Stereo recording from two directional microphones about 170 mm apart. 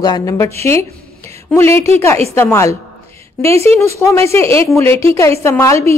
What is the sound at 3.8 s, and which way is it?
A woman's voice, 15° left (ahead or behind).